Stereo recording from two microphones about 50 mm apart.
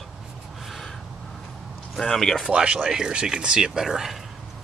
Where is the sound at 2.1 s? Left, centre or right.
Centre.